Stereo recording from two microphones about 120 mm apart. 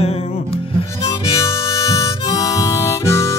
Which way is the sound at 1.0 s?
25° left (ahead or behind).